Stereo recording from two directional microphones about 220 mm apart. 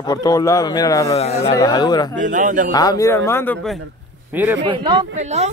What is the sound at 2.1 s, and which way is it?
Speech, 35° right (ahead or behind).